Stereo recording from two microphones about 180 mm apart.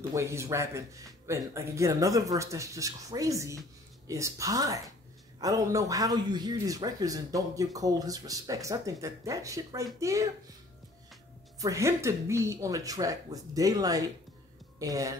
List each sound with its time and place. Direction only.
0.1 s speech: 15° right (ahead or behind)
11.6 s speech: 15° right (ahead or behind)